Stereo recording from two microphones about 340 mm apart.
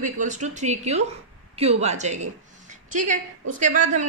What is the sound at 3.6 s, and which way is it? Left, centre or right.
Speech, right.